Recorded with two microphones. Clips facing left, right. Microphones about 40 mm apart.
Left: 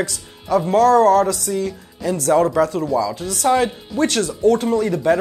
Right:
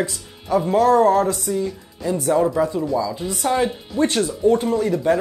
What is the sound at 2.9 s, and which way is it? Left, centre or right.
Speech, left.